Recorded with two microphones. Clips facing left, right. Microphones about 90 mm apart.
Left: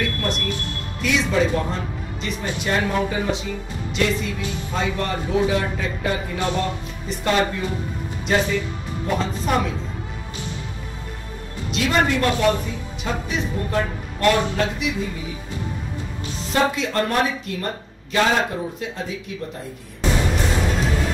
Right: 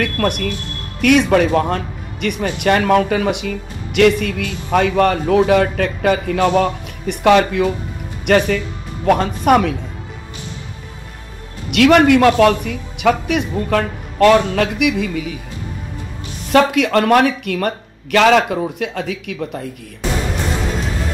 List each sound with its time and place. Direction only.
0.0 s speech: 65° right (ahead or behind)
8.3 s speech: 65° right (ahead or behind)
11.7 s speech: 70° right (ahead or behind)
16.5 s speech: 75° right (ahead or behind)